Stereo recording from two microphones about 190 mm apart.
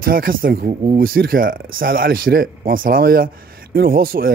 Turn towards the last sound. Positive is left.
turn(degrees=-50)  # may be behind; listen again after turning